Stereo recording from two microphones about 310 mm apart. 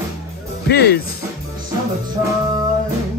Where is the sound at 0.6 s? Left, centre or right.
Left.